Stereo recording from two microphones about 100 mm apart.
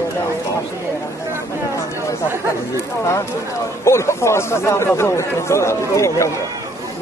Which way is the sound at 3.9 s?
30° left (ahead or behind).